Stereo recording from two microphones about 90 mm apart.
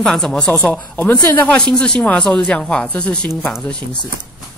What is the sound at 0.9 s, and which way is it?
Speech, 25° left (ahead or behind).